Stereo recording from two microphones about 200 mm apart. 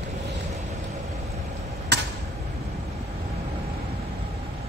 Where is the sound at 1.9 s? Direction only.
55° right (ahead or behind).